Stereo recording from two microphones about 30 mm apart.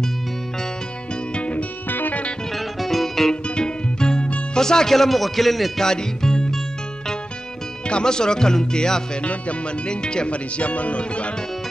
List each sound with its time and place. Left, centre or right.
1.3 s music: left
1.9 s music: left
2.5 s music: centre
3.4 s music: left
4.6 s speech: centre
4.9 s speech: centre
5.8 s speech: centre
7.8 s speech: left
9.2 s speech: left
9.8 s speech: left
10.3 s speech: left